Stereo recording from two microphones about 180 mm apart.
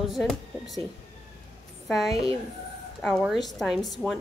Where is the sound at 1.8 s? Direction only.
Centre (ahead or behind).